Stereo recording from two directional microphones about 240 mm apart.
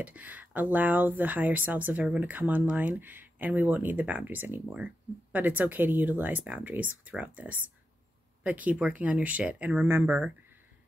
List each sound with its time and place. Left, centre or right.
0.0 s speech: centre